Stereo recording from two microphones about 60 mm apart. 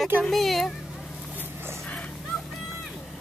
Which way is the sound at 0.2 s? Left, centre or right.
Centre.